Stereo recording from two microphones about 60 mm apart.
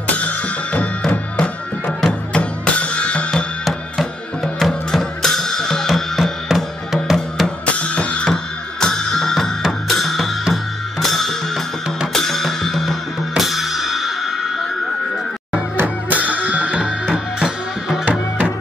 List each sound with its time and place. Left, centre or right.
1.3 s music: centre
2.3 s music: centre
3.6 s music: centre
6.1 s music: centre
7.6 s music: centre
9.7 s drum kit: centre
10.5 s music: centre
16.1 s music: right